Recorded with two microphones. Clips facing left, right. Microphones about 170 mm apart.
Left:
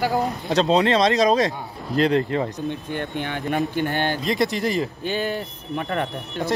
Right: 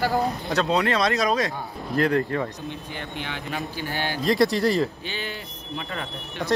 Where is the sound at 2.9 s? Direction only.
50° left (ahead or behind).